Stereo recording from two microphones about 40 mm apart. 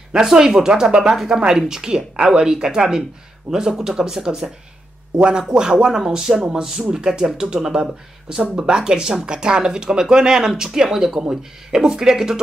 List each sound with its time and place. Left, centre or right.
0.1 s speech: centre